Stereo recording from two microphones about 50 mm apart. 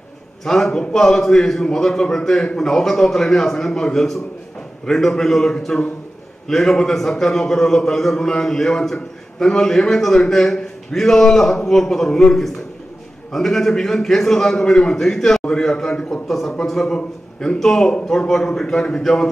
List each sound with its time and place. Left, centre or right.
0.5 s a man's voice: centre